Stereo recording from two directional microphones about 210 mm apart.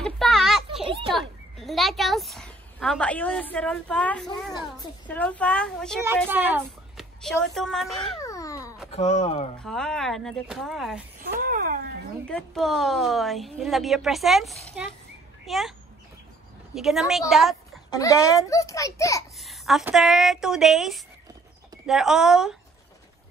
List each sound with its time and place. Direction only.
0.0 s a sound: centre (ahead or behind)
1.1 s a child's voice: centre (ahead or behind)
6.3 s speech: 10° right (ahead or behind)
7.2 s a woman's voice: centre (ahead or behind)
8.2 s cat: 15° left (ahead or behind)
8.9 s speech: 30° left (ahead or behind)
9.6 s a woman's voice: 5° left (ahead or behind)
11.3 s a sound: 40° right (ahead or behind)
12.3 s a woman's voice: centre (ahead or behind)
16.7 s a woman's voice: centre (ahead or behind)
17.9 s a child's voice: 15° left (ahead or behind)
19.4 s a woman's voice: centre (ahead or behind)